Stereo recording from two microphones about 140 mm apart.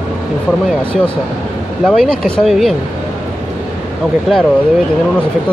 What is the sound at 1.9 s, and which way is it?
Speech, 5° left (ahead or behind).